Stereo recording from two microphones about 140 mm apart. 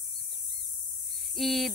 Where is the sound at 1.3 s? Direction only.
Centre (ahead or behind).